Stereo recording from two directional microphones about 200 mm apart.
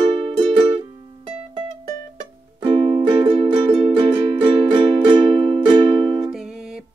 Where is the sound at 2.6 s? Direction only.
25° right (ahead or behind).